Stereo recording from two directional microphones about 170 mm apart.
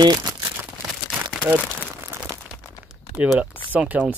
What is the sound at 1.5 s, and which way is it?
Crumpling, 10° right (ahead or behind).